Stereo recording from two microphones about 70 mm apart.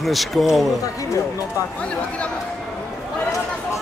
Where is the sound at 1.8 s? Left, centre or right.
Centre.